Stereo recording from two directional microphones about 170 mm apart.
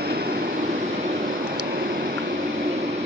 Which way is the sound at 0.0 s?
65° right (ahead or behind).